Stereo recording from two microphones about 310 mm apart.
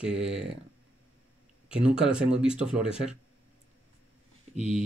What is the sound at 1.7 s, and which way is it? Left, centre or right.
Speech, centre.